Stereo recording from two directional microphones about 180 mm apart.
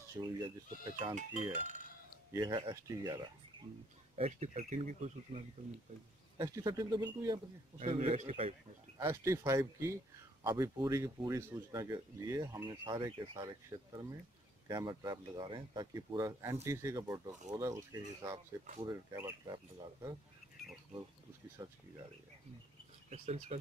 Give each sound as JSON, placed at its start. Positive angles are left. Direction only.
{"t": 0.2, "sound": "speech", "side_deg": -25}
{"t": 0.9, "sound": "speech", "side_deg": -40}
{"t": 2.3, "sound": "speech", "side_deg": -25}
{"t": 4.2, "sound": "speech", "side_deg": -40}
{"t": 6.3, "sound": "speech", "side_deg": -20}
{"t": 7.8, "sound": "speech", "side_deg": -35}
{"t": 9.0, "sound": "speech", "side_deg": -15}
{"t": 21.6, "sound": "speech", "side_deg": -20}
{"t": 23.0, "sound": "speech", "side_deg": -40}